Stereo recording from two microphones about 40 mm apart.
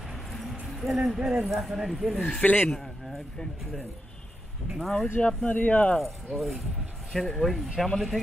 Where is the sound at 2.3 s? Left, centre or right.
Left.